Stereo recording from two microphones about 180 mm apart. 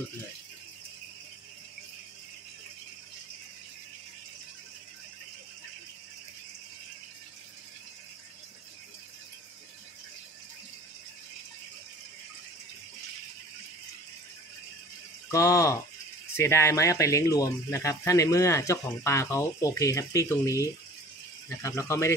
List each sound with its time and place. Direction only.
15.3 s speech: 20° left (ahead or behind)